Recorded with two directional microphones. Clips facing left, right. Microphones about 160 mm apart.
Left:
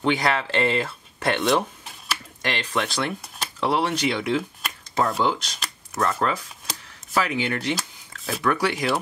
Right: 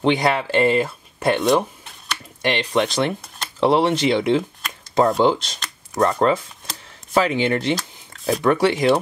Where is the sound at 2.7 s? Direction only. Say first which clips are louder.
Right 6 dB; 25° right (ahead or behind).